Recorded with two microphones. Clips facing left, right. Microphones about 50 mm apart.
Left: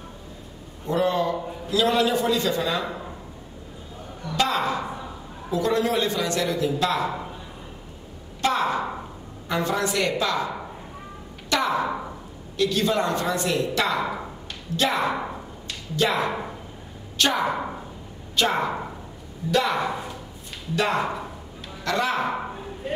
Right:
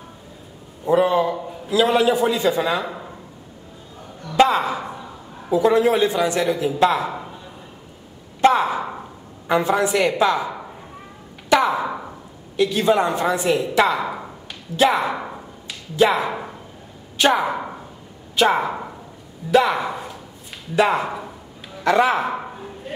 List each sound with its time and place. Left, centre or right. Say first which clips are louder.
0.8 s a man's voice: right 5 dB; centre
4.5 s a man's voice: right 3 dB; centre
8.5 s a sound: right 3 dB; centre
9.5 s a man's voice: right 6 dB; centre
11.4 s a sound: right 5 dB; centre
12.5 s a man's voice: right 5 dB; centre
13.8 s a sound: right 3 dB; centre
16.1 s speech: right 3 dB; centre
17.2 s a man's voice: right 5 dB; centre
21.8 s a man's voice: right 7 dB; right
22.2 s speech: right 1 dB; centre
22.8 s a sound: left 3 dB; centre